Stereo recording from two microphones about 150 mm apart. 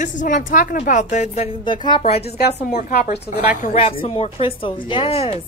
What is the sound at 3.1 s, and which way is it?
A woman's voice, 50° left (ahead or behind).